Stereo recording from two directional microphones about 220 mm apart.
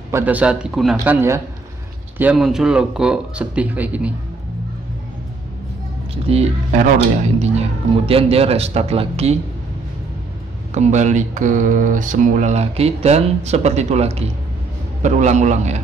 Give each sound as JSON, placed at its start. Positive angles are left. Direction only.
{"t": 0.1, "sound": "speech", "side_deg": -5}
{"t": 2.1, "sound": "speech", "side_deg": -5}
{"t": 6.2, "sound": "speech", "side_deg": -30}
{"t": 10.7, "sound": "speech", "side_deg": -30}